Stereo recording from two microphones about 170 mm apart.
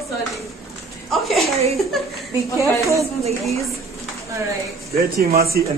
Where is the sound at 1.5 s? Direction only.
35° right (ahead or behind).